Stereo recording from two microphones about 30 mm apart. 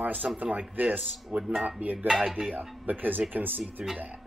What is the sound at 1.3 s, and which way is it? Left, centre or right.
Speech, right.